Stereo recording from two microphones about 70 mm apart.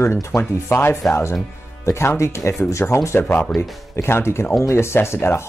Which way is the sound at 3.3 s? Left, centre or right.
Left.